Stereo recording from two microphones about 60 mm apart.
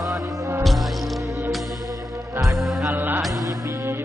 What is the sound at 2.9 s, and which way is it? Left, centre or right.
Music, right.